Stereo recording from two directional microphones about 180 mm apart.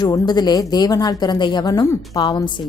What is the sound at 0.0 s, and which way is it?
A woman's voice, 25° left (ahead or behind).